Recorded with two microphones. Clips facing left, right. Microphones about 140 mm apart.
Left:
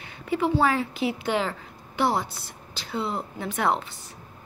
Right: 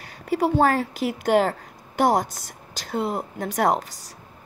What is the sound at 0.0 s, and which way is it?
Speech, 40° right (ahead or behind).